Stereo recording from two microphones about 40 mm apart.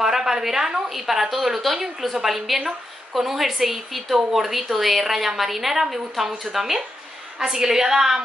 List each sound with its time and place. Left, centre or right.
0.0 s a woman's voice: centre